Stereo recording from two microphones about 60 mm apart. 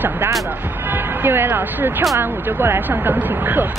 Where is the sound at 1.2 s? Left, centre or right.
Right.